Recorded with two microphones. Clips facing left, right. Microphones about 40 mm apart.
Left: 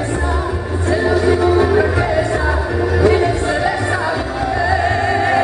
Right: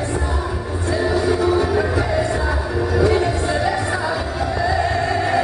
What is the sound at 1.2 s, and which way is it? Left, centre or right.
Music, centre.